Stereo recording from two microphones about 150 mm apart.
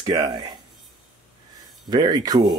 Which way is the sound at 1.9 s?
25° right (ahead or behind).